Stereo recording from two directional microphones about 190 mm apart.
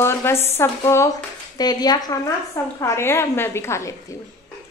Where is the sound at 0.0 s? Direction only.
15° left (ahead or behind).